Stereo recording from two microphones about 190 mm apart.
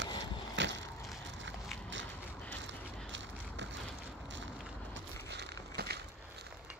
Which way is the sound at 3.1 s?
75° right (ahead or behind).